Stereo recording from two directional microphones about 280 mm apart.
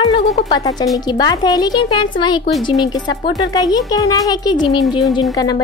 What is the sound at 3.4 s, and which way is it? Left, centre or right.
A woman's voice, centre.